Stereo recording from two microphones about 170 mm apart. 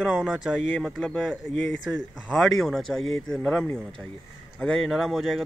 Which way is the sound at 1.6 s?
90° left.